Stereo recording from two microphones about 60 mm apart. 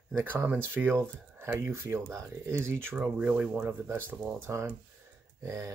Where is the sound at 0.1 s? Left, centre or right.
Right.